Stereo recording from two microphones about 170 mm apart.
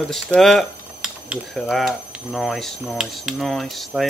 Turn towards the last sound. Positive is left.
turn(degrees=0)  # may be behind; listen again after turning